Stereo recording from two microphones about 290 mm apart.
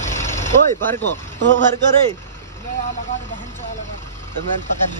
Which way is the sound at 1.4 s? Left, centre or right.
Right.